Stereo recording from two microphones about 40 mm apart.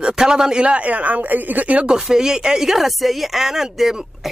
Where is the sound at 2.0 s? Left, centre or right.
Centre.